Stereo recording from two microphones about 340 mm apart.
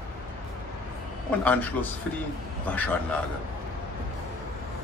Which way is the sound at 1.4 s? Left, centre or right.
Centre.